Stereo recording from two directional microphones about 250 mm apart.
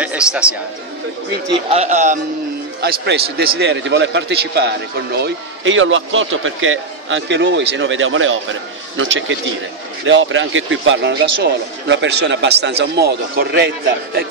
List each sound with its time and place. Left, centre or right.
0.0 s a man's voice: centre
1.7 s a man's voice: right
2.8 s a man's voice: right